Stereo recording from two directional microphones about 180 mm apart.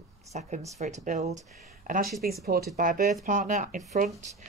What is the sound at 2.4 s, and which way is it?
Speech, 60° right (ahead or behind).